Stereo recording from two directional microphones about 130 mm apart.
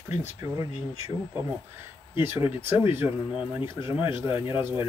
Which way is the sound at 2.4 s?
15° right (ahead or behind).